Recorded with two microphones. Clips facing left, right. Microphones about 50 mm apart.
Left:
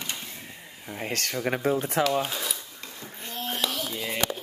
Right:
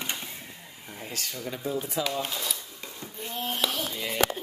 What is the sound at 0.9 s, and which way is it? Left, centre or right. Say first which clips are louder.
Speech: left 7 dB; left.